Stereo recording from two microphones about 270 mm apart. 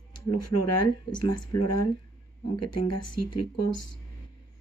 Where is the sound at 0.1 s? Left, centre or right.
Left.